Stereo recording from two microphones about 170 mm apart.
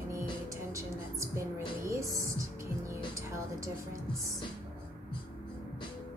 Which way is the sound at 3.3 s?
20° right (ahead or behind).